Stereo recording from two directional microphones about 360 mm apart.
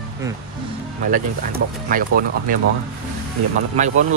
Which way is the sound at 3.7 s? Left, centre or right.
Centre.